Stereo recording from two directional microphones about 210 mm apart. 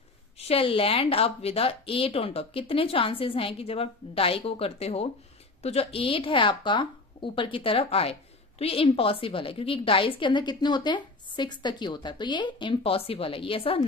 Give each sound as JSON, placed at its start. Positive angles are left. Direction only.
{"t": 0.4, "sound": "speech", "side_deg": 25}